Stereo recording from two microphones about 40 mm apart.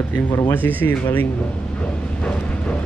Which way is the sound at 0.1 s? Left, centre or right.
Left.